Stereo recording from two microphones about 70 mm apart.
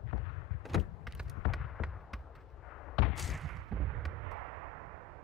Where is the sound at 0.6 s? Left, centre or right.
Centre.